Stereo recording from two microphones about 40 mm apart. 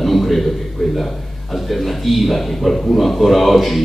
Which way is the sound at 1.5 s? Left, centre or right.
Centre.